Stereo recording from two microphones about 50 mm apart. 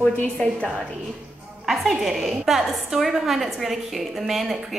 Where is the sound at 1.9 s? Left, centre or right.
Centre.